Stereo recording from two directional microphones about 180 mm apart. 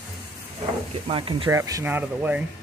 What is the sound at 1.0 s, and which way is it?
Speech, 25° right (ahead or behind).